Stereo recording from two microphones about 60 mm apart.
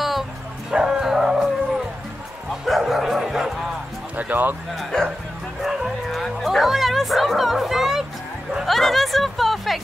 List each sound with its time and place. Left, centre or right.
0.7 s bow-wow: centre
4.2 s speech: right
4.7 s speech: centre
5.6 s music: centre
8.6 s a sound: centre